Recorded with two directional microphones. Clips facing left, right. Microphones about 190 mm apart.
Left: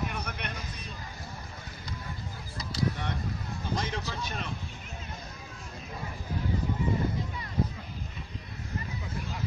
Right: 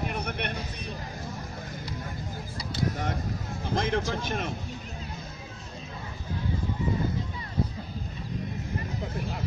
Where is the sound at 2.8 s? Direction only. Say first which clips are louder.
Right 2 dB; 45° right (ahead or behind).